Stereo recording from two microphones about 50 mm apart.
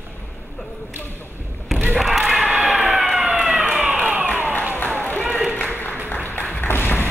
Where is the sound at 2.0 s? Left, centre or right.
Centre.